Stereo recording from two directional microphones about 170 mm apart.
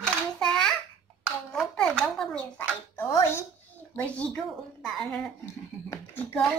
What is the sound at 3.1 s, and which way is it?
A woman's voice, 15° left (ahead or behind).